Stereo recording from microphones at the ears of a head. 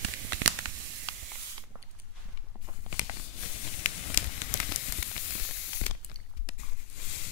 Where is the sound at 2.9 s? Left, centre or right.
Left.